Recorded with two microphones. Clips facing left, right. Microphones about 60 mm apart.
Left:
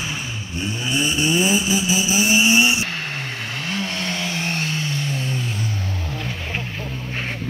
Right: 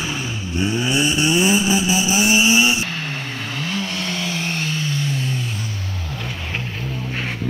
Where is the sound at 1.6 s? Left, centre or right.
Right.